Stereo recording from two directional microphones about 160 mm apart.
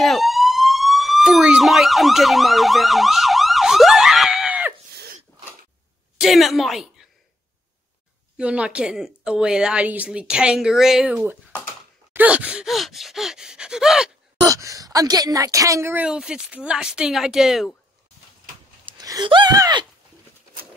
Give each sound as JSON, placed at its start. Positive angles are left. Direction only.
{"t": 0.0, "sound": "fire alarm", "side_deg": 0}
{"t": 4.9, "sound": "sneeze", "side_deg": -75}
{"t": 6.1, "sound": "a woman's voice", "side_deg": 0}
{"t": 8.4, "sound": "a woman's voice", "side_deg": -5}
{"t": 12.1, "sound": "gasp", "side_deg": -10}
{"t": 14.4, "sound": "a woman's voice", "side_deg": -20}
{"t": 18.9, "sound": "speech", "side_deg": -25}